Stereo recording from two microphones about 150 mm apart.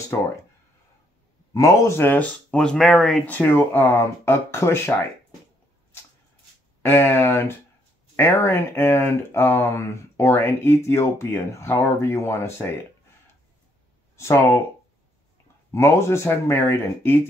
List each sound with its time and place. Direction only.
1.5 s speech: 20° left (ahead or behind)
6.8 s speech: 15° left (ahead or behind)
14.1 s speech: 15° left (ahead or behind)
15.7 s speech: 20° left (ahead or behind)